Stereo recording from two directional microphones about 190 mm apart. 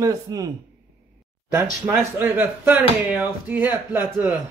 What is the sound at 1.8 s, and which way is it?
A man's voice, 10° right (ahead or behind).